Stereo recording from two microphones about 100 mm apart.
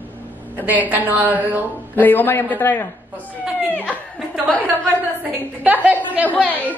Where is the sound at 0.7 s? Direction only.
15° right (ahead or behind).